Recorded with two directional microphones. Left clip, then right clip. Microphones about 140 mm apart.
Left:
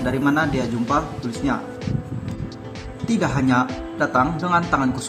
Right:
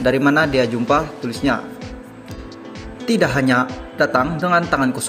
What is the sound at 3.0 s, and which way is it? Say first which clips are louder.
A man's voice: right 5 dB; 15° right (ahead or behind).